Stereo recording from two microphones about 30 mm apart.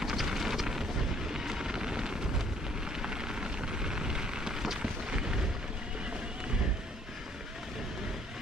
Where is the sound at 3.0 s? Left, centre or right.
Right.